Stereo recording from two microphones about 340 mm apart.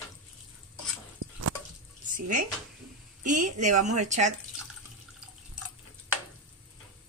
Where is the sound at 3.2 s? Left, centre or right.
Right.